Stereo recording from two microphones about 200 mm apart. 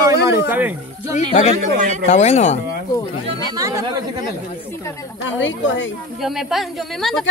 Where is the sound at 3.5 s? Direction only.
15° right (ahead or behind).